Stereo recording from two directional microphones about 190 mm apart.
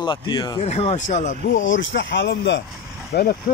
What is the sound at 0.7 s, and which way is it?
Speech, 35° left (ahead or behind).